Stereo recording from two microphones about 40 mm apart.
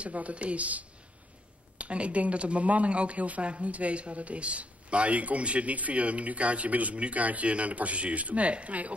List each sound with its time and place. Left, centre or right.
0.0 s speech: right